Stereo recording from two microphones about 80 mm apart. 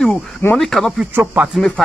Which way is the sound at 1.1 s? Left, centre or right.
Right.